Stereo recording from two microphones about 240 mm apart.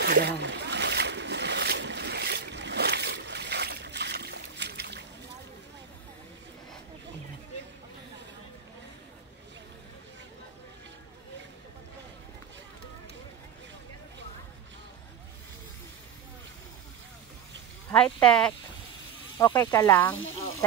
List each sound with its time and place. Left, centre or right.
0.0 s splash: right
17.9 s speech: centre